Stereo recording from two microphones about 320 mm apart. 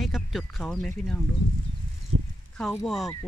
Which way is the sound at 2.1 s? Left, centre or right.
Right.